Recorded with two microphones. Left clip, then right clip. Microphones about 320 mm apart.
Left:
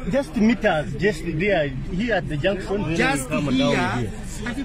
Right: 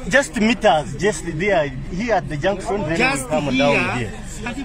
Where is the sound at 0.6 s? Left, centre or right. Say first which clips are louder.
Right 8 dB; right.